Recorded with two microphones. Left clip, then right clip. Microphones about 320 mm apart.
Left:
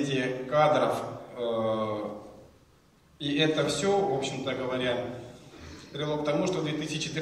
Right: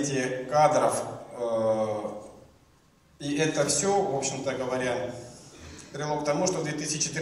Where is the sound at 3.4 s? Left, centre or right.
Centre.